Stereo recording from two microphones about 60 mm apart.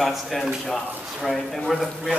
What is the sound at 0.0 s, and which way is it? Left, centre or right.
Speech, centre.